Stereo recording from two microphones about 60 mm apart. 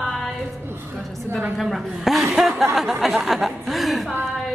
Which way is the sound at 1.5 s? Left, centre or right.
Centre.